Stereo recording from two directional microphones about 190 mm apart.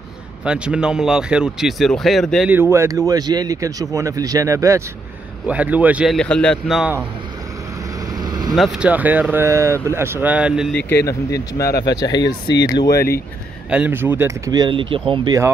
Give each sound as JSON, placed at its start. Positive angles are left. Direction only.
{"t": 0.5, "sound": "speech", "side_deg": -5}
{"t": 2.5, "sound": "speech", "side_deg": -15}
{"t": 8.2, "sound": "vehicle", "side_deg": -20}
{"t": 8.5, "sound": "speech", "side_deg": -5}
{"t": 11.8, "sound": "speech", "side_deg": 20}
{"t": 12.9, "sound": "speech", "side_deg": 55}
{"t": 13.7, "sound": "speech", "side_deg": -10}